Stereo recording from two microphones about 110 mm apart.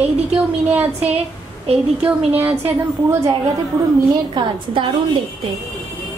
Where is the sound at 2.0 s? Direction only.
15° right (ahead or behind).